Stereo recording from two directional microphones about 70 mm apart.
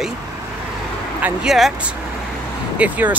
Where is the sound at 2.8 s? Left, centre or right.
Right.